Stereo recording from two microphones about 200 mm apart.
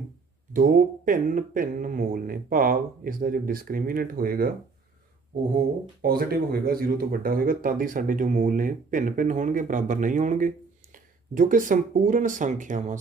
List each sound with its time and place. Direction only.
0.5 s speech: 45° right (ahead or behind)
6.0 s speech: 50° right (ahead or behind)